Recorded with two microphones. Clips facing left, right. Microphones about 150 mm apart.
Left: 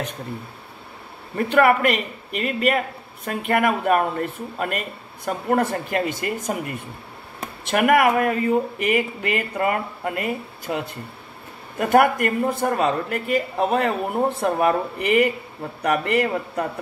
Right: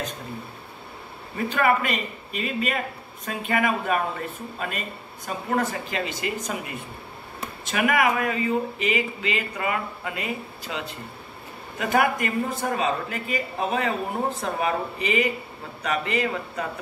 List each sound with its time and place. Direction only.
1.3 s speech: 65° left (ahead or behind)